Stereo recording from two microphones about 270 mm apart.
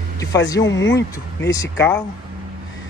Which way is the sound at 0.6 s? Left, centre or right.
Left.